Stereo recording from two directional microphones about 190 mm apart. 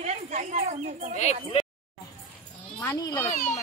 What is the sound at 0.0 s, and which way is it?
Speech, 35° right (ahead or behind).